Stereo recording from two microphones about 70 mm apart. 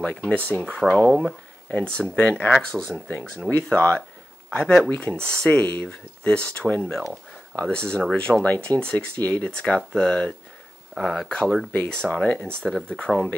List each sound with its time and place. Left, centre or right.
0.0 s speech: centre
2.5 s speech: centre
3.7 s speech: centre
5.5 s speech: left